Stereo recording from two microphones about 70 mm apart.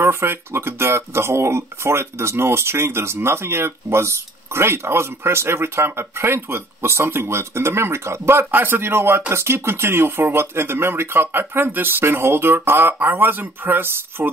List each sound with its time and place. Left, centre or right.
0.0 s speech: right